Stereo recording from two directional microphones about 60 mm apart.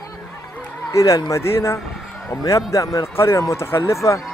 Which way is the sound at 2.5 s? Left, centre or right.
Left.